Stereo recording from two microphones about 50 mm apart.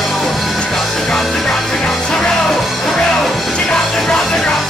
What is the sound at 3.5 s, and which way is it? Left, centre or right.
Music, centre.